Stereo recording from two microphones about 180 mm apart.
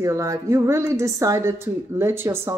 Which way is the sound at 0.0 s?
15° right (ahead or behind).